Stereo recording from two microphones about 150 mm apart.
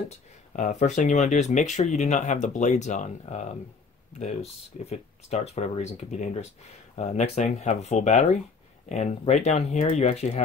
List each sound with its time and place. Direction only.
0.5 s speech: 50° left (ahead or behind)